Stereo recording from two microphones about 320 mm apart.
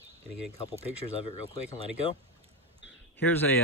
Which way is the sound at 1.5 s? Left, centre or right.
Centre.